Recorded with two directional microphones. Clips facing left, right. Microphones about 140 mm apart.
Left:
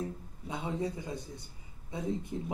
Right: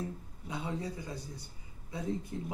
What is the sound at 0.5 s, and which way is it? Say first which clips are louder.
Speech: left 3 dB; 20° left (ahead or behind).